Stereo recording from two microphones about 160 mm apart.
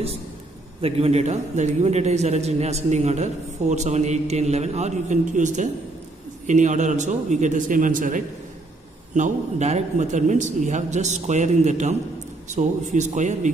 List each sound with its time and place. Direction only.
0.7 s a man's voice: 35° right (ahead or behind)